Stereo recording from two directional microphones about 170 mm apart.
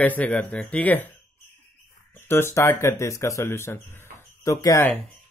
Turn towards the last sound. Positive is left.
turn(degrees=15)  # may be behind; listen again after turning